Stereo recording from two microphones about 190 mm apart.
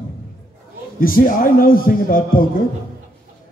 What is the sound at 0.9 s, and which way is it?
A man's voice, 50° left (ahead or behind).